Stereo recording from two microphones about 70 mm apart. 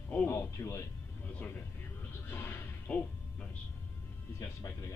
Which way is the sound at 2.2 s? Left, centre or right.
Left.